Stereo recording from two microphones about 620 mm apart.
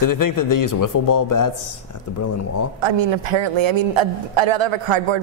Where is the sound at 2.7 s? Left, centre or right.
Right.